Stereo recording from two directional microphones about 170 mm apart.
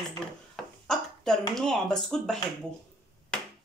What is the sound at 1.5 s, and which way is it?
Speech, 5° left (ahead or behind).